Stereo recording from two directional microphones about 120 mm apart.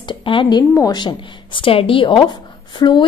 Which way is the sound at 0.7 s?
30° left (ahead or behind).